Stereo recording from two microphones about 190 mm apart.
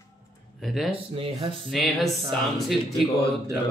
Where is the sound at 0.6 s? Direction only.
Centre (ahead or behind).